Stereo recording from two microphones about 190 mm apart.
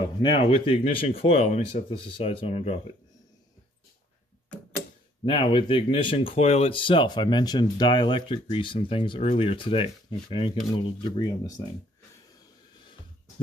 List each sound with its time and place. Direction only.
0.2 s speech: 25° left (ahead or behind)
5.2 s speech: 25° left (ahead or behind)